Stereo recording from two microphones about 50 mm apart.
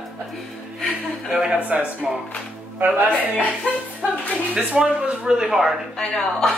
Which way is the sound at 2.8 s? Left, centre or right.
Right.